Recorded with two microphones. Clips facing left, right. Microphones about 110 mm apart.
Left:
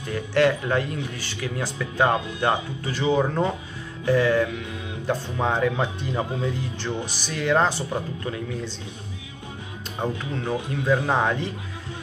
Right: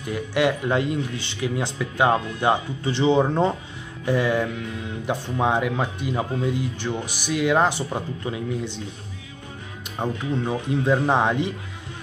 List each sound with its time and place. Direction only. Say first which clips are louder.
0.1 s speech: left 1 dB; 15° right (ahead or behind)
4.0 s speech: left 2 dB; 15° right (ahead or behind)
9.9 s speech: right 3 dB; 15° right (ahead or behind)